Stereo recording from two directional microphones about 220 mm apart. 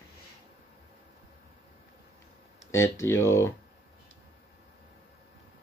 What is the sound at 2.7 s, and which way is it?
Speech, 10° left (ahead or behind).